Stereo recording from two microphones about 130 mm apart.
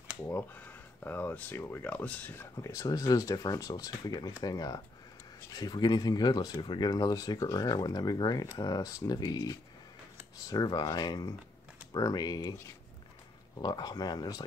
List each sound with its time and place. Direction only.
0.3 s speech: 15° left (ahead or behind)
2.5 s speech: 25° left (ahead or behind)